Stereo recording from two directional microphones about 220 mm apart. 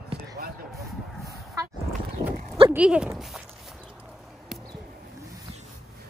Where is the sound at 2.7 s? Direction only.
5° right (ahead or behind).